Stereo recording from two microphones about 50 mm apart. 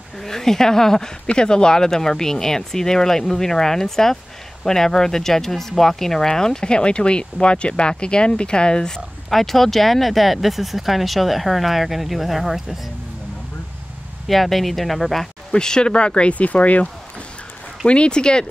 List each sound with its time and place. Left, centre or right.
0.2 s speech: centre
14.2 s speech: centre
15.5 s speech: centre